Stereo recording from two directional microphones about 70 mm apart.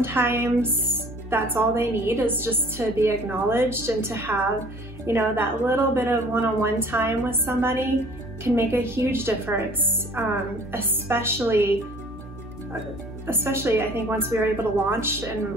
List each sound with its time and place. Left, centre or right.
0.0 s a woman's voice: right
13.3 s a woman's voice: right